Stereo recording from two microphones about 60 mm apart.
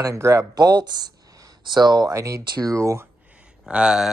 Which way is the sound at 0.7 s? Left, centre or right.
Right.